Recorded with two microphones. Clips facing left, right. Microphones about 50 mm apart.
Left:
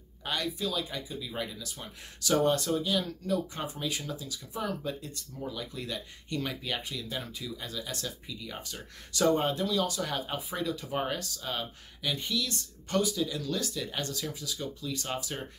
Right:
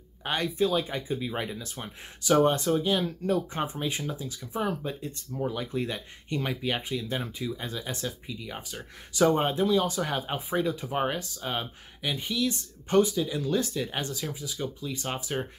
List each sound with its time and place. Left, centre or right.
0.2 s speech: right